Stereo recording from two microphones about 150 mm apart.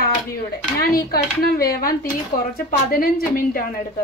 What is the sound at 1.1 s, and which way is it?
Speech, 90° left.